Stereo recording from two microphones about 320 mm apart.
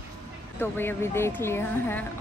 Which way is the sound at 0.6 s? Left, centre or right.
Centre.